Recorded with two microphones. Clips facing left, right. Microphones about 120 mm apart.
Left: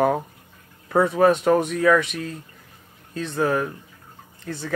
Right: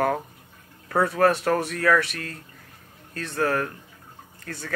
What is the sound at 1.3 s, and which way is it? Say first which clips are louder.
Speech: left 5 dB; 15° left (ahead or behind).